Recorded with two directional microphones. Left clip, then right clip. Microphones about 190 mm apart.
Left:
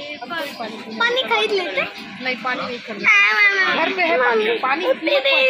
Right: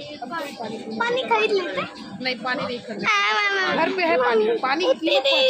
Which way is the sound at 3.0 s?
35° right (ahead or behind).